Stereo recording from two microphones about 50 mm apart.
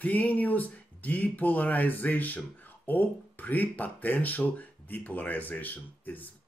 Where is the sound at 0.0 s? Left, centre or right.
Left.